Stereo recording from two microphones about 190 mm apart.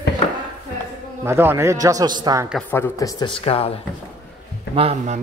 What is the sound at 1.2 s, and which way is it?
Speech, 10° right (ahead or behind).